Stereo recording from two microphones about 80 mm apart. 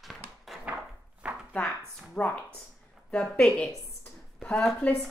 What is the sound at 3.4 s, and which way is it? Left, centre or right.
Speech, centre.